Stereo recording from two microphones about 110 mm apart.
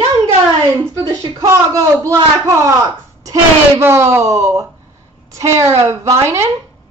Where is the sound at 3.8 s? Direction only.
20° right (ahead or behind).